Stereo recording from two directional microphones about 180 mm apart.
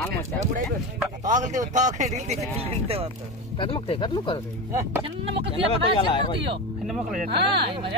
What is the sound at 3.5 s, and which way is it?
Speech, 30° left (ahead or behind).